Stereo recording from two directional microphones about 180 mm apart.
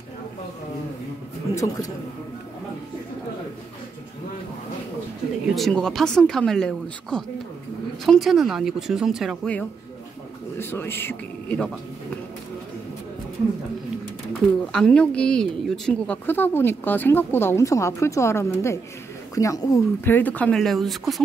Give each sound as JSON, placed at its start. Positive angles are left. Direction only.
{"t": 1.5, "sound": "a woman's voice", "side_deg": 20}
{"t": 5.5, "sound": "a woman's voice", "side_deg": 0}
{"t": 14.7, "sound": "a woman's voice", "side_deg": 5}